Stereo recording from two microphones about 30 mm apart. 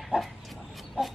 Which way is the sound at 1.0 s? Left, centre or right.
Right.